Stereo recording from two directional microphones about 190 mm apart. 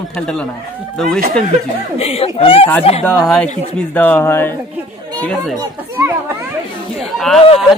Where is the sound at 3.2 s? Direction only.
5° left (ahead or behind).